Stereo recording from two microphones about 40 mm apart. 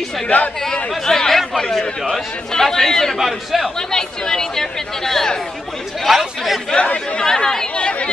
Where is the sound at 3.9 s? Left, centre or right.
Centre.